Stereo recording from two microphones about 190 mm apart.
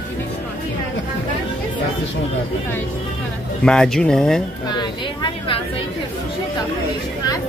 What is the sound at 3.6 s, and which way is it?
Speech, 5° left (ahead or behind).